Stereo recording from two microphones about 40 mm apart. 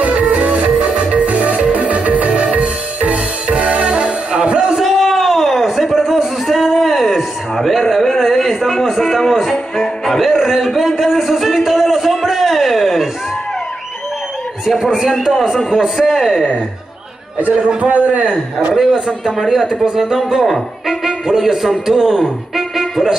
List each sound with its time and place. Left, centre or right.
0.0 s music: right
4.7 s a sound: centre
8.8 s music: centre
10.9 s a sound: centre
14.8 s speech: centre
17.5 s a man's voice: right
18.8 s a man's voice: centre
19.3 s speech: centre